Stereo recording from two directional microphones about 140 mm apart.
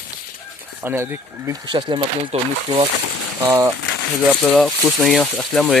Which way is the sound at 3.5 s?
20° right (ahead or behind).